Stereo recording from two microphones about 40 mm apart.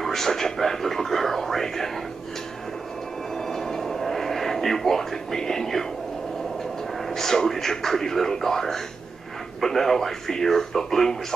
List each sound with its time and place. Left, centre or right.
0.0 s speech: centre
3.3 s a sound: centre
7.1 s speech: centre